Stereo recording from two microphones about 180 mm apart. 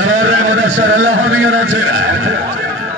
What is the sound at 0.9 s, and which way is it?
A man's voice, 90° right.